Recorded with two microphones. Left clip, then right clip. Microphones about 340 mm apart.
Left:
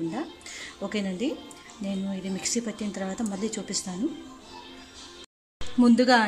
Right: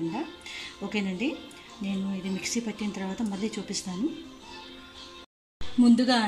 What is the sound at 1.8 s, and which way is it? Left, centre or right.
Speech, left.